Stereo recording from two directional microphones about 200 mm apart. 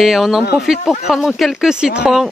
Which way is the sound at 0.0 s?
Centre (ahead or behind).